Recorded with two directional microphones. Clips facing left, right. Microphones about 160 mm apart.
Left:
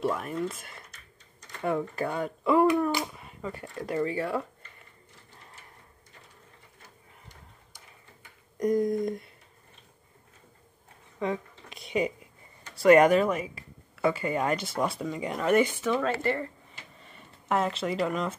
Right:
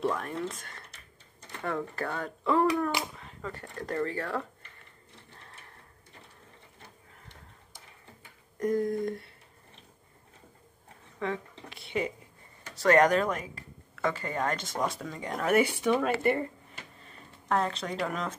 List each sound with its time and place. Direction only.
0.0 s speech: 5° left (ahead or behind)
8.5 s a sound: 15° left (ahead or behind)
11.1 s a sound: 15° left (ahead or behind)
12.7 s speech: 10° left (ahead or behind)
15.4 s speech: 10° right (ahead or behind)
17.0 s speech: 5° left (ahead or behind)